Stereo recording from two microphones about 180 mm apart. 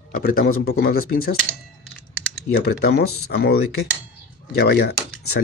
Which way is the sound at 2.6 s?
60° left (ahead or behind).